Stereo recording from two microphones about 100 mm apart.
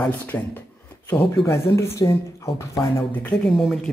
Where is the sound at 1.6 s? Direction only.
25° left (ahead or behind).